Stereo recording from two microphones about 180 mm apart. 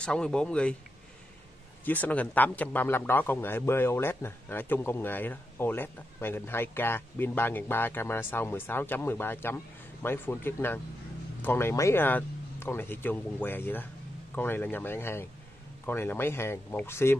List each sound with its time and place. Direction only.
0.0 s speech: 5° left (ahead or behind)
1.9 s speech: 10° left (ahead or behind)